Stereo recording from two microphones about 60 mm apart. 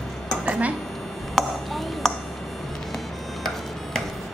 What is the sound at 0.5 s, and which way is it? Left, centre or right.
Speech, right.